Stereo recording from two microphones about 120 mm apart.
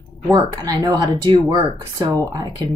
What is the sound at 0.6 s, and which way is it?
Speech, 30° right (ahead or behind).